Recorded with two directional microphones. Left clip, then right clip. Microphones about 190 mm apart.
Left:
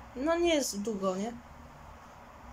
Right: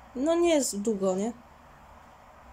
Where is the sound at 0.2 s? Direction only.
20° right (ahead or behind).